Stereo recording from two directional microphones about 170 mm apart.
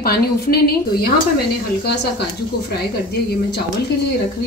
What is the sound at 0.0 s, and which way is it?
A woman's voice, 65° left (ahead or behind).